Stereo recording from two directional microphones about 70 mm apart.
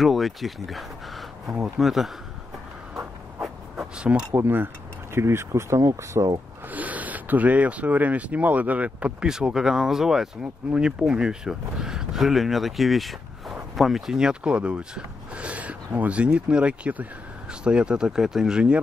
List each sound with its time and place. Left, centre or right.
0.0 s speech: centre
4.3 s speech: right
6.7 s speech: right
9.2 s speech: centre